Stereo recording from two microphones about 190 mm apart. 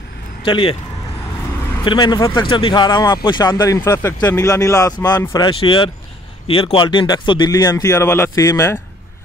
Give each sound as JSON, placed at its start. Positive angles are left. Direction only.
{"t": 0.4, "sound": "speech", "side_deg": 30}
{"t": 1.9, "sound": "speech", "side_deg": 25}